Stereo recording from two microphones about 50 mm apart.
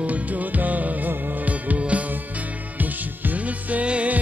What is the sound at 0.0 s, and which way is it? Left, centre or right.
Music, right.